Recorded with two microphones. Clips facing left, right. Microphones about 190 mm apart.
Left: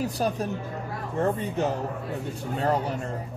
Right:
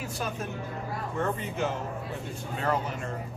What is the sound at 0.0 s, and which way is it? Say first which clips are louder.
Speech: left 7 dB; 35° left (ahead or behind).